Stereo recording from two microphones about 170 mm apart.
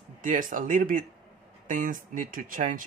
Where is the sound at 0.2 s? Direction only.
50° right (ahead or behind).